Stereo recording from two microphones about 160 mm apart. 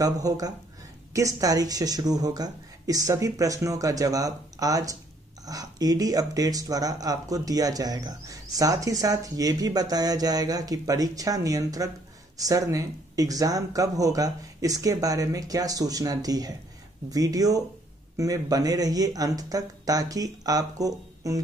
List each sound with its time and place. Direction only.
0.0 s speech: 20° right (ahead or behind)